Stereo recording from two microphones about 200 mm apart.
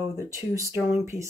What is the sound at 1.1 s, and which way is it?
Speech, 15° left (ahead or behind).